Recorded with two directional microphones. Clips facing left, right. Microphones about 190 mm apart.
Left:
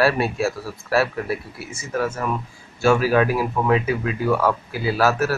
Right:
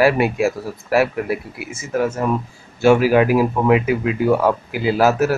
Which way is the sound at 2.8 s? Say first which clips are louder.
Right 4 dB; 15° right (ahead or behind).